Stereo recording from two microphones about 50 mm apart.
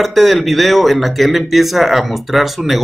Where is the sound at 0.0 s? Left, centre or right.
Centre.